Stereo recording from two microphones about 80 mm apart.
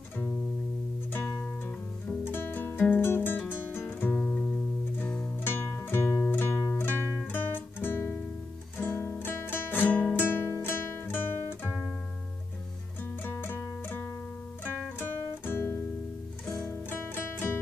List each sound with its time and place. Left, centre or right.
1.1 s music: left
3.6 s guitar: left
5.4 s music: left
7.2 s guitar: left
8.7 s music: left
13.2 s music: left
16.4 s music: centre
16.9 s music: left